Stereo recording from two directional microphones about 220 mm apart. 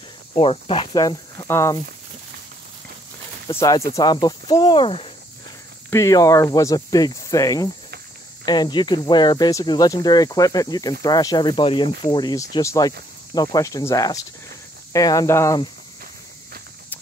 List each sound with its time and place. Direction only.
0.3 s speech: 25° left (ahead or behind)
3.5 s speech: 15° left (ahead or behind)
5.9 s speech: 15° left (ahead or behind)